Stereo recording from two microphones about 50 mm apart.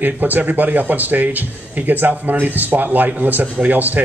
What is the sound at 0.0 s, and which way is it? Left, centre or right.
Speech, right.